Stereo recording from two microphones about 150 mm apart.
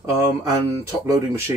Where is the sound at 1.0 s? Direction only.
20° right (ahead or behind).